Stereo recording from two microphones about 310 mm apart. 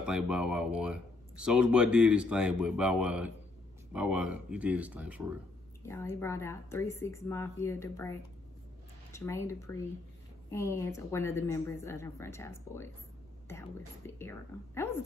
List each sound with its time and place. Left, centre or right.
0.0 s speech: centre
5.9 s a woman's voice: centre